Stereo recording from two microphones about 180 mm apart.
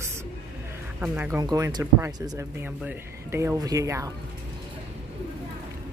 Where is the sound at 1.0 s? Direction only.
10° right (ahead or behind).